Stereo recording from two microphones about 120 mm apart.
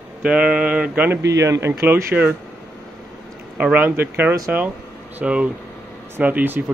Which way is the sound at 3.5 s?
10° right (ahead or behind).